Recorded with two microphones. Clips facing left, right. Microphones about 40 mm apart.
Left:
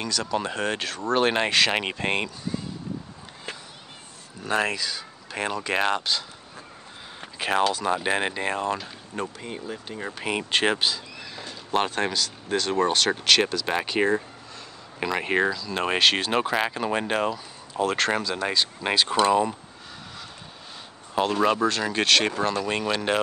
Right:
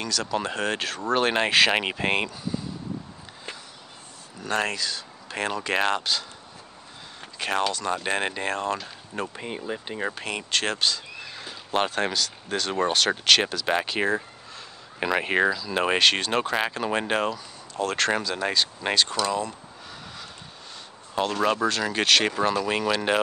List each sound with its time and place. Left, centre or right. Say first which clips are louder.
0.0 s speech: even; centre
4.4 s speech: left 1 dB; centre
7.2 s a sound: left 2 dB; centre
7.7 s speech: left 2 dB; centre
9.4 s speech: right 2 dB; right
10.2 s speech: left 7 dB; centre
11.1 s speech: even; centre
19.1 s speech: left 6 dB; left
21.1 s speech: left 2 dB; centre